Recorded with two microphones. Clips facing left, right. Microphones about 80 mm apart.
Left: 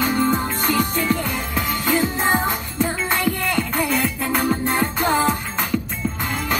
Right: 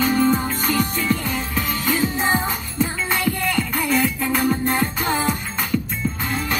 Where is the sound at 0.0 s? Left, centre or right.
Centre.